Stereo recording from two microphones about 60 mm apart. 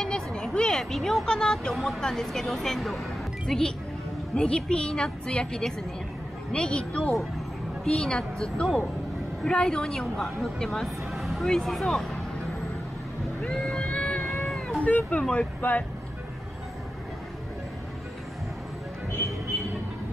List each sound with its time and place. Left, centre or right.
0.0 s a woman's voice: centre
7.8 s a woman's voice: centre
11.1 s music: centre
11.5 s speech: centre
13.4 s speech: centre
13.8 s whale vocalization: centre
14.8 s speech: left